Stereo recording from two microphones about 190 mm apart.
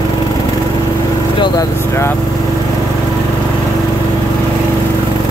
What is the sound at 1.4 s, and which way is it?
Speech, 15° left (ahead or behind).